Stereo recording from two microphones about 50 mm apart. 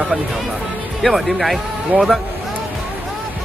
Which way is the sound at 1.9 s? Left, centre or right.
Right.